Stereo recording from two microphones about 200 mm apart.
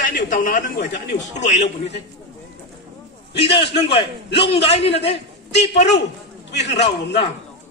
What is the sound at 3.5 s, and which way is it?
A man's voice, 25° left (ahead or behind).